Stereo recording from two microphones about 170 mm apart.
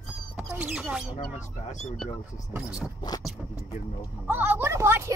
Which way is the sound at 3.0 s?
25° left (ahead or behind).